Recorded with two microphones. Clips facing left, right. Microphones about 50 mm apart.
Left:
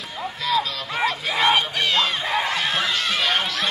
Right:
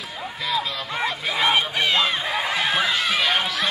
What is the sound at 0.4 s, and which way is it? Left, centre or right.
Music, centre.